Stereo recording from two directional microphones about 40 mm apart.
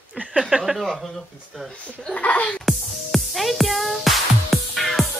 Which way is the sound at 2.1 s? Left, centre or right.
Left.